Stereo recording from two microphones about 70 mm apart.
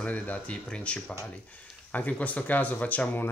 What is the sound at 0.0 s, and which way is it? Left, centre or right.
Speech, centre.